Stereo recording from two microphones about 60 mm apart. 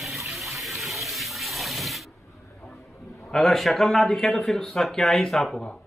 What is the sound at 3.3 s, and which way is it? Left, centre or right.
Speech, centre.